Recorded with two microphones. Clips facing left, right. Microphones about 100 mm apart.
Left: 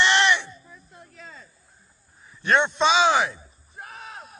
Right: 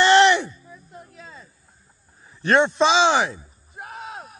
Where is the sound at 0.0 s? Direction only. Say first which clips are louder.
Right 6 dB; 40° right (ahead or behind).